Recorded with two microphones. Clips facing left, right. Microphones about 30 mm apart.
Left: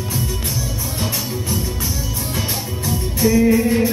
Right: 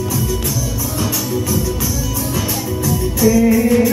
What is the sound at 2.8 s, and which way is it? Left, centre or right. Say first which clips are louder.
Music: right 4 dB; left.